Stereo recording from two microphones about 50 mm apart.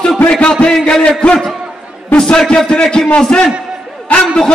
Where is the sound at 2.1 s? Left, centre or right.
Centre.